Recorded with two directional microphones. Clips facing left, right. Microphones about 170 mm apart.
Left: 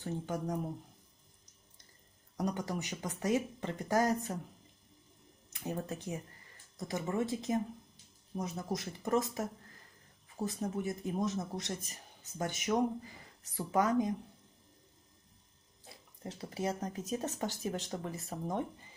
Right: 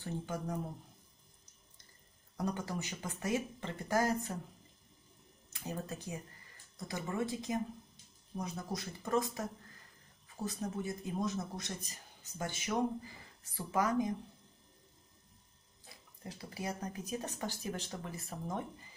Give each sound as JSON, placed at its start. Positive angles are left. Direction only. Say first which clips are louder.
{"t": 0.0, "sound": "speech", "louder": "left 3 dB", "side_deg": 20}
{"t": 2.3, "sound": "speech", "louder": "left 2 dB", "side_deg": 20}
{"t": 5.5, "sound": "speech", "louder": "left 3 dB", "side_deg": 20}
{"t": 15.9, "sound": "speech", "louder": "left 3 dB", "side_deg": 25}